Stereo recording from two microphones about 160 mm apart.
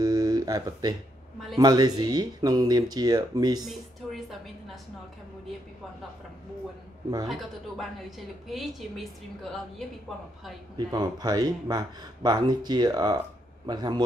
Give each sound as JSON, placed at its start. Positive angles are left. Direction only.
{"t": 0.0, "sound": "a sound", "side_deg": -25}
{"t": 1.6, "sound": "speech", "side_deg": -25}
{"t": 3.6, "sound": "a woman's voice", "side_deg": 0}
{"t": 7.2, "sound": "a woman's voice", "side_deg": 0}
{"t": 10.9, "sound": "speech", "side_deg": -25}